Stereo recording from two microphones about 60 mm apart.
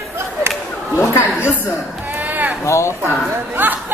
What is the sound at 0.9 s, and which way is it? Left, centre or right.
Chatter, left.